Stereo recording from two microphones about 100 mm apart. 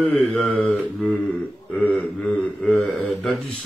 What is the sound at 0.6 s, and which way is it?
Speech, 15° left (ahead or behind).